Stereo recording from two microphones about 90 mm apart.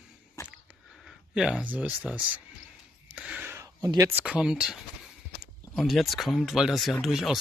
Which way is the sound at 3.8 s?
35° right (ahead or behind).